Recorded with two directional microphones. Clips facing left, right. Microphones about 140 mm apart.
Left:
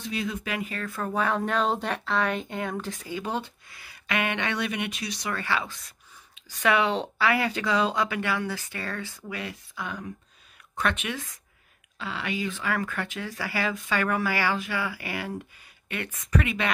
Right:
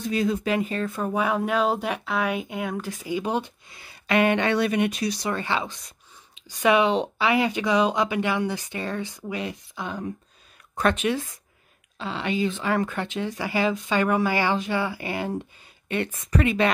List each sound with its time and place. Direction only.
0.0 s speech: 40° right (ahead or behind)
5.3 s speech: 20° right (ahead or behind)